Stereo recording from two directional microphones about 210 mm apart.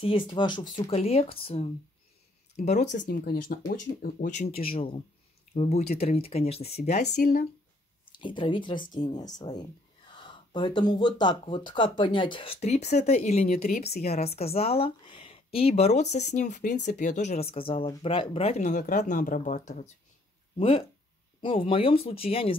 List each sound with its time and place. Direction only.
0.0 s speech: 25° left (ahead or behind)
2.8 s speech: 35° left (ahead or behind)
8.1 s speech: 25° left (ahead or behind)